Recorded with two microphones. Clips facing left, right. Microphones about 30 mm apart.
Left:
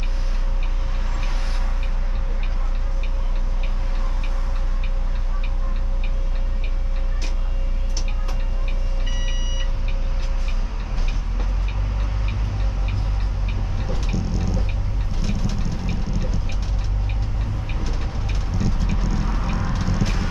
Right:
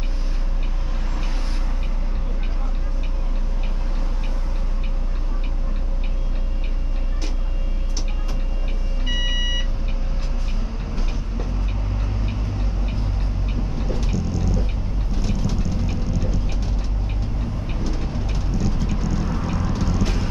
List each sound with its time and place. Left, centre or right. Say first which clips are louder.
17.8 s vehicle: right 3 dB; centre